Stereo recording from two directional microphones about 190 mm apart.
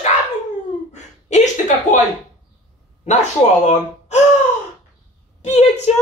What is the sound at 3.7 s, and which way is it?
Gasp, 35° left (ahead or behind).